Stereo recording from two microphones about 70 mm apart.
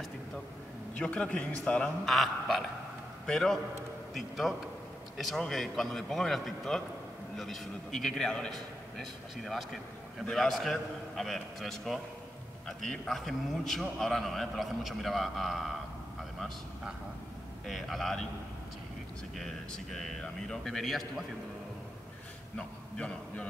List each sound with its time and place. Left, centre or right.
0.9 s a man's voice: centre
2.0 s a man's voice: centre
16.2 s vehicle: centre
17.6 s a man's voice: centre
19.3 s a man's voice: centre
22.6 s a man's voice: centre